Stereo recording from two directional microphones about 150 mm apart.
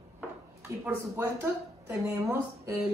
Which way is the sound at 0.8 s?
15° right (ahead or behind).